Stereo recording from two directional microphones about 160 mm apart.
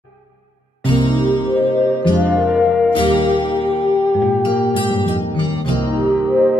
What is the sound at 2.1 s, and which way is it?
Music, 10° right (ahead or behind).